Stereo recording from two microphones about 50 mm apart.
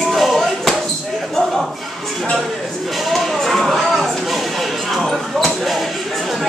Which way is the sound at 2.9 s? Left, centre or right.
Centre.